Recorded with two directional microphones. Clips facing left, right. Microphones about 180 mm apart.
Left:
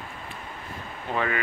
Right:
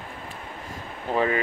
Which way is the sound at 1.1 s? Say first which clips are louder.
Right 4 dB; 30° right (ahead or behind).